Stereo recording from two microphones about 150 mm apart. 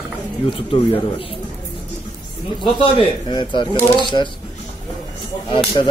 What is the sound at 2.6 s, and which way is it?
Speech, 35° left (ahead or behind).